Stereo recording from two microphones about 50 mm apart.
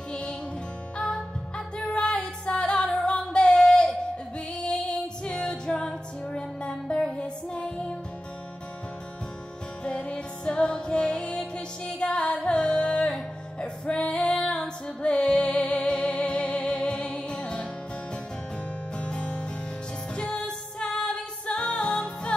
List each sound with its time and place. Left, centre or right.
0.1 s music: centre
2.6 s singing: centre
4.6 s female singing: centre
6.2 s music: centre
9.8 s music: centre
18.9 s music: left